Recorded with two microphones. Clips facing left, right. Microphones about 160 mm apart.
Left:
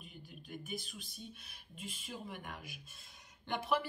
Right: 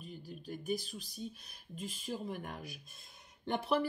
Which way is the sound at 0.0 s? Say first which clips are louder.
Right 7 dB; 35° right (ahead or behind).